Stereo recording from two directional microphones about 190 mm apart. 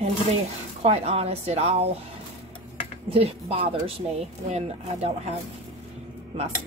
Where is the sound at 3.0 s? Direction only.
30° right (ahead or behind).